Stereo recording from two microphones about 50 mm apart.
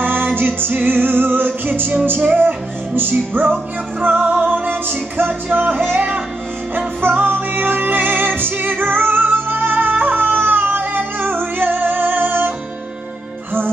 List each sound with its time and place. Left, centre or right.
0.0 s music: right